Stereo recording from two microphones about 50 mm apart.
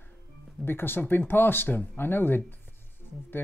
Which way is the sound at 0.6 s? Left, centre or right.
Left.